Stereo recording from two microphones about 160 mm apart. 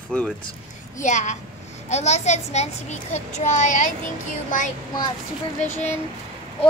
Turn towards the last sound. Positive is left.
turn(degrees=45)  # may be behind; listen again after turning